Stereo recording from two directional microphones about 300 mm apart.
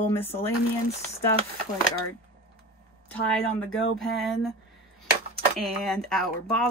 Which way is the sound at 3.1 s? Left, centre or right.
Centre.